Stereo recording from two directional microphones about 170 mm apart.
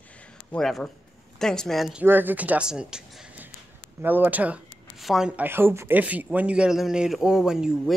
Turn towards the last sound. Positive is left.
turn(degrees=-5)  # may be behind; listen again after turning